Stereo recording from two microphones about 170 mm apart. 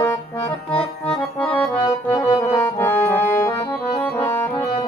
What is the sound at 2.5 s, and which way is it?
Music, 10° left (ahead or behind).